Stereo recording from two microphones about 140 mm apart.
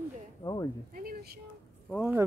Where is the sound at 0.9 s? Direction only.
90° right.